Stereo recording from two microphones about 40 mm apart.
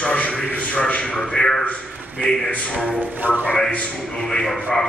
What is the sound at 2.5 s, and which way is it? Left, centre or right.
Speech, left.